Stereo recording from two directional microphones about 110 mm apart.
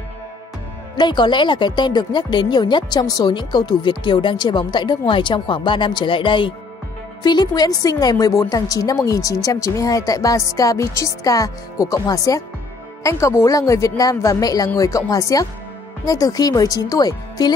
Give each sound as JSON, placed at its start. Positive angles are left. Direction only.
{"t": 0.9, "sound": "a woman's voice", "side_deg": 45}